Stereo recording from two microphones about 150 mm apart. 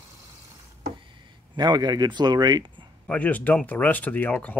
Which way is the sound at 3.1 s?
10° left (ahead or behind).